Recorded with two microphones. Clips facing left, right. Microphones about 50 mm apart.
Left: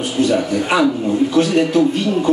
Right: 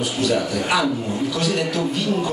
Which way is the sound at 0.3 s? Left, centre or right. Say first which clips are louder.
Left 2 dB; left.